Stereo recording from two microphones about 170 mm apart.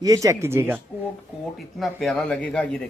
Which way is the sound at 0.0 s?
20° right (ahead or behind).